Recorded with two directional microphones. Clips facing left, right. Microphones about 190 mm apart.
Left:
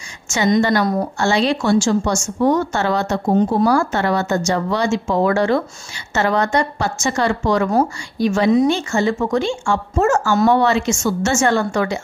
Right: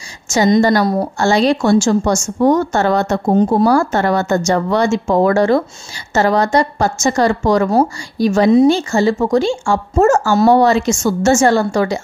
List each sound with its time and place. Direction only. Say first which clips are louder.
0.3 s a woman's voice: right 4 dB; 40° right (ahead or behind)